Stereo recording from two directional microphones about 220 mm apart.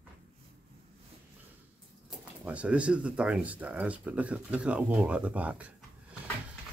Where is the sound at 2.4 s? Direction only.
5° right (ahead or behind).